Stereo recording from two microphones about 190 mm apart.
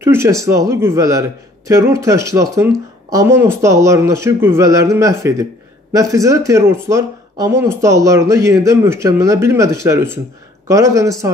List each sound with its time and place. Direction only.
0.0 s speech: 15° right (ahead or behind)